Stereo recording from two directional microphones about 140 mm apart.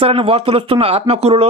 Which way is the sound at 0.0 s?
40° right (ahead or behind).